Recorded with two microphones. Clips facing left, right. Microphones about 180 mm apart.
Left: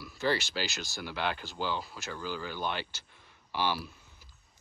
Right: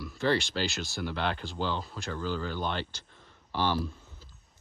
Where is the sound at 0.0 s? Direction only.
5° left (ahead or behind).